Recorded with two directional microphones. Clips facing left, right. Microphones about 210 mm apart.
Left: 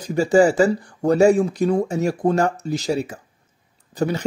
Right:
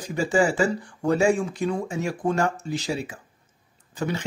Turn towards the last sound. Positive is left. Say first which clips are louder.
# left 6 dB
turn(degrees=40)  # may be behind; listen again after turning